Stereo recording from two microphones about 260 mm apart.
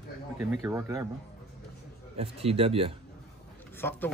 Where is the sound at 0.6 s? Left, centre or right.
Centre.